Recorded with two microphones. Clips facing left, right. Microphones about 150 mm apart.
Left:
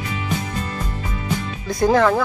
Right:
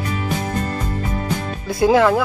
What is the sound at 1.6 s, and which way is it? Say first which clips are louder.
Speech: right 2 dB; 5° right (ahead or behind).